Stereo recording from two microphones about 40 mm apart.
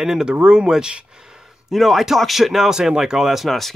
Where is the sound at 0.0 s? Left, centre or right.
Centre.